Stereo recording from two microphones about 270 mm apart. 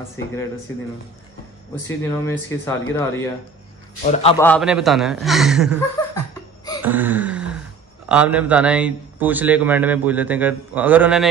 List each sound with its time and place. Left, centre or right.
1.9 s speech: centre
4.0 s a man's voice: left
4.4 s a man's voice: centre
6.1 s laughter: centre
6.8 s a sound: centre
8.1 s a man's voice: centre